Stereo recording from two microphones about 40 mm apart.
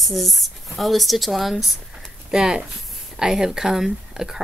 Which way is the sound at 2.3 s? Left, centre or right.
Centre.